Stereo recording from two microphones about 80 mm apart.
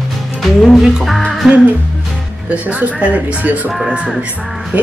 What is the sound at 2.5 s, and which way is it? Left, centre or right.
Speech, centre.